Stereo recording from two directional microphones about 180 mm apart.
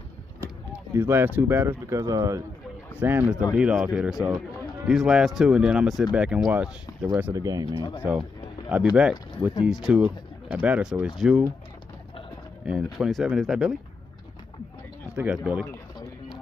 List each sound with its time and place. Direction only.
0.9 s speech: 10° right (ahead or behind)
7.3 s speech: 20° right (ahead or behind)
8.0 s a sound: 5° right (ahead or behind)
9.7 s speech: 5° right (ahead or behind)
12.6 s speech: 5° right (ahead or behind)
15.1 s speech: 5° right (ahead or behind)